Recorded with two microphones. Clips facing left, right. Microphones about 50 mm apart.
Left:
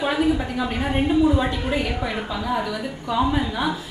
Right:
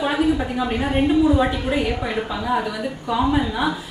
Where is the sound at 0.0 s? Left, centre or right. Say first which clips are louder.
Right 1 dB; centre.